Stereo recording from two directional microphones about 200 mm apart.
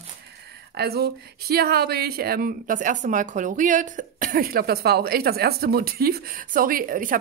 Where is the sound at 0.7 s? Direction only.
50° right (ahead or behind).